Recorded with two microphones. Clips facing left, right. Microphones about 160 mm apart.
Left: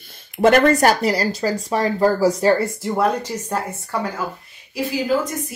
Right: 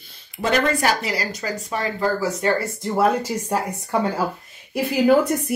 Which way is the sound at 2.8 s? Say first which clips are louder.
Even; centre (ahead or behind).